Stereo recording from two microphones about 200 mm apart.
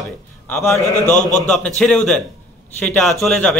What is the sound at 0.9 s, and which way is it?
Speech, 20° right (ahead or behind).